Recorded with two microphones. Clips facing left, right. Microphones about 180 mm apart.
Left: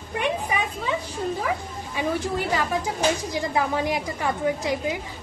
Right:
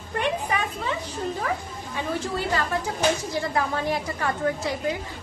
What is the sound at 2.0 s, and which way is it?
Speech, 15° left (ahead or behind).